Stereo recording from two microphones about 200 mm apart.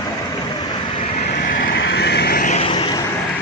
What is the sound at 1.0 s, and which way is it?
Vehicle, 35° left (ahead or behind).